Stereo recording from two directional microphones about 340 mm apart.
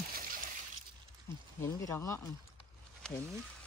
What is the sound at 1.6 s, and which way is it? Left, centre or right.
Speech, centre.